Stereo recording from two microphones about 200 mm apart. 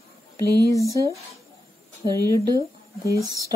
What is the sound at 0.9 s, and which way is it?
A woman's voice, 15° right (ahead or behind).